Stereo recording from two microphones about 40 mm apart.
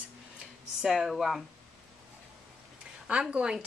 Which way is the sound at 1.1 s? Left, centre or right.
Centre.